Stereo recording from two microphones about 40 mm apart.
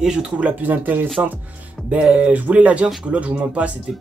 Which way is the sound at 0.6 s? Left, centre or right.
Right.